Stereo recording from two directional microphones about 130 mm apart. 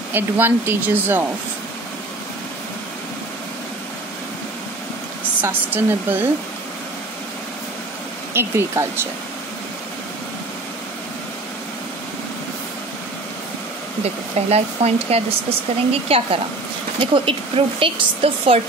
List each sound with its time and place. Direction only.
0.1 s speech: 15° right (ahead or behind)
5.4 s speech: 15° right (ahead or behind)
8.3 s speech: 20° right (ahead or behind)
14.0 s speech: 55° right (ahead or behind)